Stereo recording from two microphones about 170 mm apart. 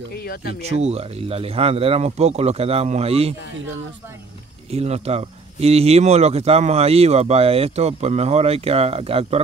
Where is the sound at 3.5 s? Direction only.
90° right.